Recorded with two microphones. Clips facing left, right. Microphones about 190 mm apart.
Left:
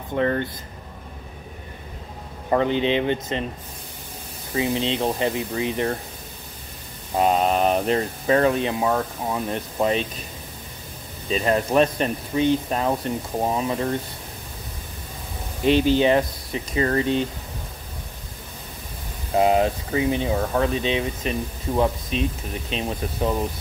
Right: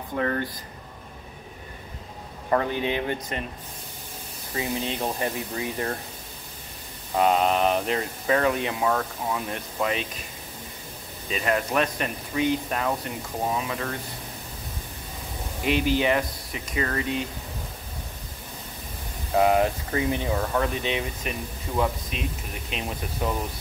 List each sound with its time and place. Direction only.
0.2 s speech: 30° left (ahead or behind)
2.5 s speech: 25° left (ahead or behind)
4.6 s speech: 25° left (ahead or behind)
7.2 s speech: 30° left (ahead or behind)
11.2 s speech: 30° left (ahead or behind)
15.6 s speech: 30° left (ahead or behind)
19.3 s speech: 25° left (ahead or behind)